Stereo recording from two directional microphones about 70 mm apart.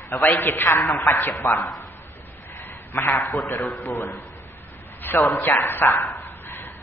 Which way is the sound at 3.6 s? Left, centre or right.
Left.